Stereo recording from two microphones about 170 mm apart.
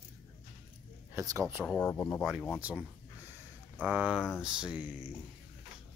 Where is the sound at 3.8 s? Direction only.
5° right (ahead or behind).